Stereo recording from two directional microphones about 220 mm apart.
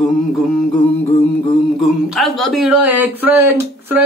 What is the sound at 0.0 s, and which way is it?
Speech, centre (ahead or behind).